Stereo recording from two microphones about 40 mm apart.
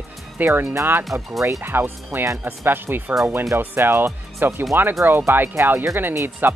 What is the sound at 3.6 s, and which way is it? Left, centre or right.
Speech, right.